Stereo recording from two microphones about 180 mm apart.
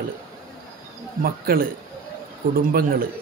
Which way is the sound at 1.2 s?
55° right (ahead or behind).